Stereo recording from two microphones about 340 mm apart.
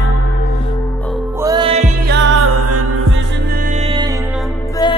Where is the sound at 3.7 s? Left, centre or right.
Centre.